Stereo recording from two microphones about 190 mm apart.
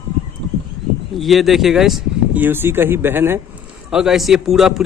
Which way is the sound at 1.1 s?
Centre (ahead or behind).